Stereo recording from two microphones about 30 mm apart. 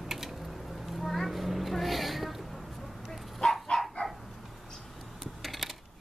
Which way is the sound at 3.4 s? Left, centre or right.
Left.